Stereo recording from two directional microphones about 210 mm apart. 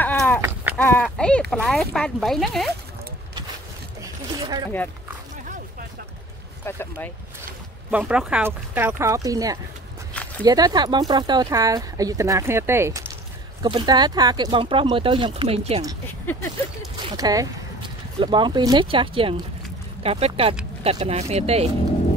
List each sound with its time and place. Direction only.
0.0 s a sound: 10° left (ahead or behind)
0.7 s speech: 10° left (ahead or behind)
4.0 s zipper: 15° right (ahead or behind)
6.6 s speech: 10° left (ahead or behind)
7.9 s speech: 5° right (ahead or behind); by 15.8 s 25° right (ahead or behind)
17.2 s speech: 15° right (ahead or behind)